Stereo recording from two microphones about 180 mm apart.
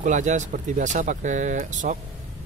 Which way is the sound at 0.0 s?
40° right (ahead or behind).